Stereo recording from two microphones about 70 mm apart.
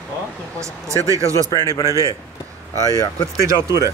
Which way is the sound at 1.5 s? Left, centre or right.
Left.